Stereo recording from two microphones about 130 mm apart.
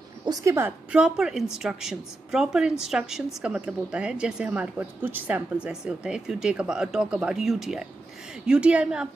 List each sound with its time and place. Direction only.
0.2 s a woman's voice: 30° right (ahead or behind)
0.9 s a woman's voice: 5° right (ahead or behind)